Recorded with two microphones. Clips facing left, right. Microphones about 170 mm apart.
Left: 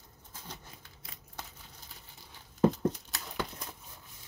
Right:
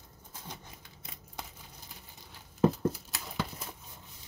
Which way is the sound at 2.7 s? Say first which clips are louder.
Even; 5° right (ahead or behind).